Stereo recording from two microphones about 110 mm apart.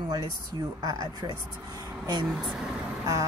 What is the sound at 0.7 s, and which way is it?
Speech, 35° right (ahead or behind).